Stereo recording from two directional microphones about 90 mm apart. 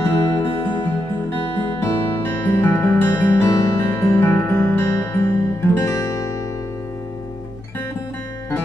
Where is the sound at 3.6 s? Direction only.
35° left (ahead or behind).